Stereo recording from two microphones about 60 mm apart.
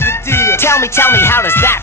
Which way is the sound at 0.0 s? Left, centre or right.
Left.